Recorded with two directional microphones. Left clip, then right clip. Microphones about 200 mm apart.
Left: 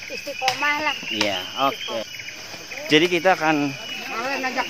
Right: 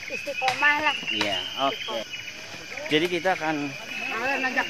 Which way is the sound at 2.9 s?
35° left (ahead or behind).